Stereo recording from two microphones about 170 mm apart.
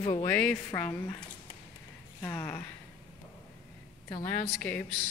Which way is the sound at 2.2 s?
15° left (ahead or behind).